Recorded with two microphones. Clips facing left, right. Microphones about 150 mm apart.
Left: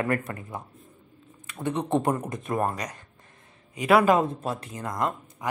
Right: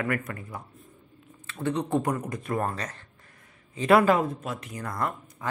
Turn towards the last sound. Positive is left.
turn(degrees=20)  # may be behind; listen again after turning